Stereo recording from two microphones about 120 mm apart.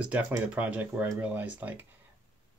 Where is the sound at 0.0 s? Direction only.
10° right (ahead or behind).